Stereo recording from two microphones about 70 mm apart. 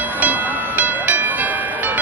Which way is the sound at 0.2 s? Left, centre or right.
Right.